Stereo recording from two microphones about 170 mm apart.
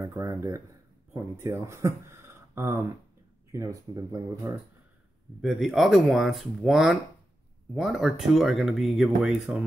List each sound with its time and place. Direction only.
0.0 s speech: 15° right (ahead or behind)
5.4 s speech: centre (ahead or behind)